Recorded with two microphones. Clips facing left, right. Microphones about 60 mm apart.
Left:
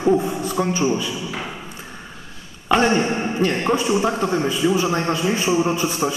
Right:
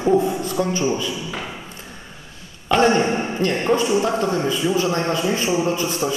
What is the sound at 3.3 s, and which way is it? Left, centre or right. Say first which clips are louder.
A man's voice: even; centre.